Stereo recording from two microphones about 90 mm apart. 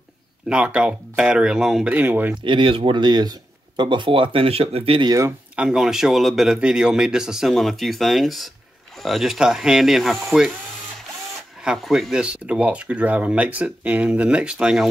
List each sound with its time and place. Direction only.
0.5 s speech: 10° right (ahead or behind)
1.9 s speech: 20° right (ahead or behind)
2.4 s speech: 70° right (ahead or behind); by 5.0 s 90° right
5.6 s speech: 5° right (ahead or behind)
11.6 s speech: 5° right (ahead or behind)